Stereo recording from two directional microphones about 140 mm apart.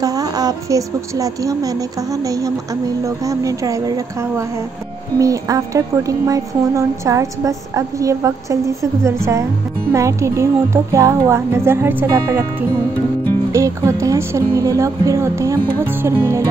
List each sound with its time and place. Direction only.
0.0 s a woman's voice: 25° right (ahead or behind)